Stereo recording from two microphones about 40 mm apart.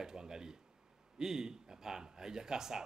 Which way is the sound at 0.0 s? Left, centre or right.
Centre.